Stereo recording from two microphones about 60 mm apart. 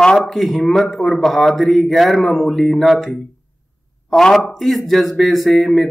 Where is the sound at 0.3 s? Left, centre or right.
Centre.